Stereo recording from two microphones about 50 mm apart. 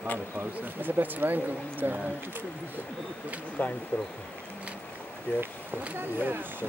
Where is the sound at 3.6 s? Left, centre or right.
Left.